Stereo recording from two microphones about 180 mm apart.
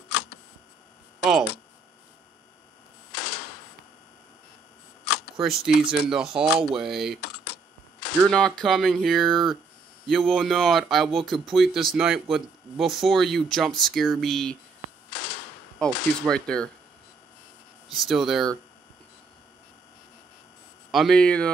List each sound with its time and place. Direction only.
1.2 s a sound: 5° right (ahead or behind)
3.1 s typewriter: 60° left (ahead or behind)
5.0 s camera: 60° left (ahead or behind)
5.8 s speech: 5° right (ahead or behind)
8.3 s speech: 5° left (ahead or behind)
15.1 s typewriter: 70° left (ahead or behind)
15.8 s speech: 5° left (ahead or behind)
17.8 s speech: centre (ahead or behind)
20.9 s speech: centre (ahead or behind)